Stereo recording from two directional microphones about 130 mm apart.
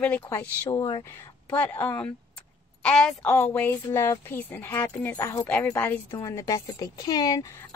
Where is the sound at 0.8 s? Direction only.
30° left (ahead or behind).